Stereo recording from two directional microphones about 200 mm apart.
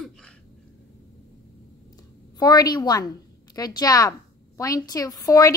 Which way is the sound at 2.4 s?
20° left (ahead or behind).